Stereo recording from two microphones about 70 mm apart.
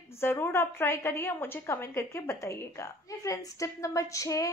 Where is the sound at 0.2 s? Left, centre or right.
Left.